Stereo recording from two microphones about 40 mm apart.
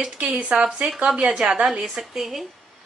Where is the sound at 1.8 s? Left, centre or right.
Centre.